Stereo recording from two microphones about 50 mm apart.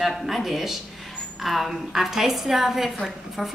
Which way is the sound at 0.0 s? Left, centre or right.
Centre.